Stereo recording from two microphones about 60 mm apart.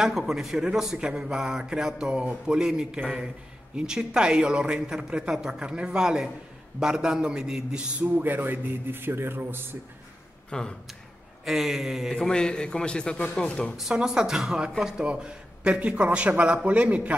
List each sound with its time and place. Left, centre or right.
0.0 s speech: centre
8.0 s a man's voice: right
10.5 s a man's voice: centre
11.4 s speech: centre
12.2 s a man's voice: centre
13.9 s a man's voice: centre